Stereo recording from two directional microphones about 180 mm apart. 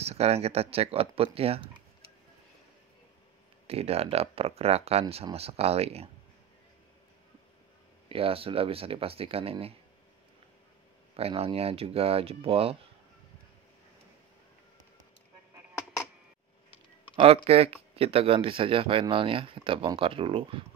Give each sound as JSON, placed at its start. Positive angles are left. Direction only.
{"t": 0.0, "sound": "speech", "side_deg": -35}
{"t": 3.6, "sound": "speech", "side_deg": -35}
{"t": 8.1, "sound": "speech", "side_deg": -30}
{"t": 11.1, "sound": "speech", "side_deg": -35}
{"t": 17.1, "sound": "speech", "side_deg": -30}